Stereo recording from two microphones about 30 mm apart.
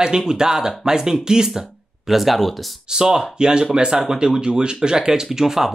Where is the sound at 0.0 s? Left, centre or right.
Right.